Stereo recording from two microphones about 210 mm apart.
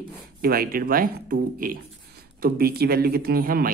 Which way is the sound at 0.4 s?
45° right (ahead or behind).